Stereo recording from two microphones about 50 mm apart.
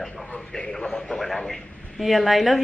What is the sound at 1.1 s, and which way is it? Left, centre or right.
Speech, centre.